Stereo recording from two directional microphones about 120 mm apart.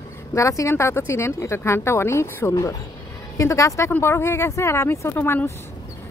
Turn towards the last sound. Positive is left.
turn(degrees=20)  # may be behind; listen again after turning